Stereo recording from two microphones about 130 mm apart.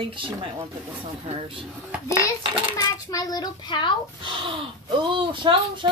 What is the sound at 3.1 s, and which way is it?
Speech, 30° left (ahead or behind).